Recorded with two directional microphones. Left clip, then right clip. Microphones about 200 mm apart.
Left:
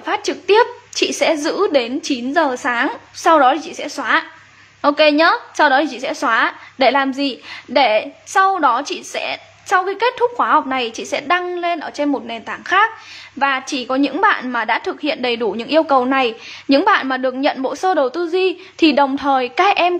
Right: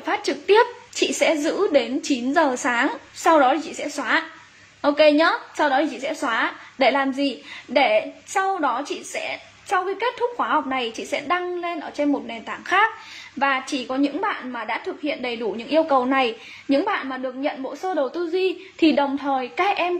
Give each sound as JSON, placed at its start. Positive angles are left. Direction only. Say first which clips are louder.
{"t": 0.0, "sound": "a woman's voice", "louder": "left 4 dB", "side_deg": 10}
{"t": 16.6, "sound": "a woman's voice", "louder": "left 8 dB", "side_deg": 25}